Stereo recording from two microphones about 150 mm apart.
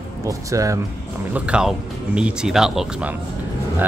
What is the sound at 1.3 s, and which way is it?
Speech, 5° right (ahead or behind).